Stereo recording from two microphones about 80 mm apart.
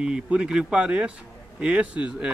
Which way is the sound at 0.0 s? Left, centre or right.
Centre.